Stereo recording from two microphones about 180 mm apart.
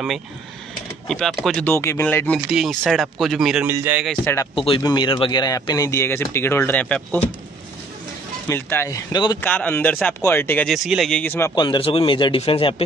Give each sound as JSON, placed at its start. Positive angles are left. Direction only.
{"t": 1.0, "sound": "speech", "side_deg": 0}
{"t": 4.1, "sound": "speech", "side_deg": 10}
{"t": 4.6, "sound": "speech", "side_deg": 30}
{"t": 8.5, "sound": "speech", "side_deg": 10}
{"t": 9.4, "sound": "speech", "side_deg": 10}
{"t": 11.5, "sound": "a man's voice", "side_deg": 25}